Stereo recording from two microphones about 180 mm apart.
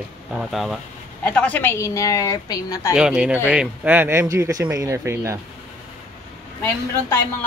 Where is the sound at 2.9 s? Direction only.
5° right (ahead or behind).